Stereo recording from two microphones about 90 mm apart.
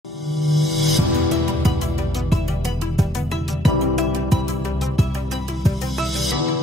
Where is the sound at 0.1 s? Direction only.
Centre (ahead or behind).